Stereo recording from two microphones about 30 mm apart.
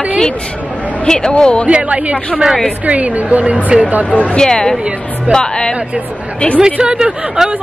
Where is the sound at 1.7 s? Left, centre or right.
Right.